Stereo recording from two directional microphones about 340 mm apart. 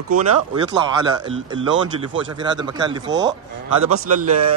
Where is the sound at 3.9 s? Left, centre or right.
Right.